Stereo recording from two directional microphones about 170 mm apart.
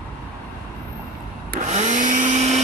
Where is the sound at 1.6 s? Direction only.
45° right (ahead or behind).